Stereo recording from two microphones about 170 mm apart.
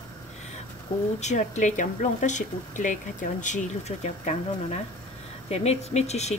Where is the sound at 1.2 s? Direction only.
45° left (ahead or behind).